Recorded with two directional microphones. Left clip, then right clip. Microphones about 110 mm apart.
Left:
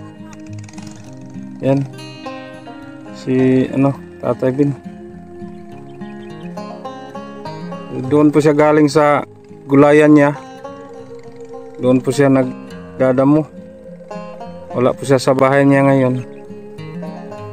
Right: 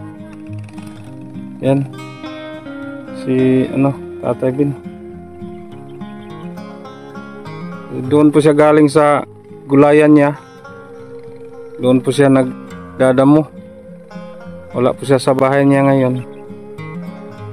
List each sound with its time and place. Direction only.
3.2 s speech: 10° right (ahead or behind)
4.4 s speech: 5° left (ahead or behind)
7.9 s speech: 15° right (ahead or behind)
11.8 s speech: 15° right (ahead or behind)
12.9 s music: 20° right (ahead or behind)
13.2 s speech: 30° right (ahead or behind)
14.8 s speech: 5° right (ahead or behind)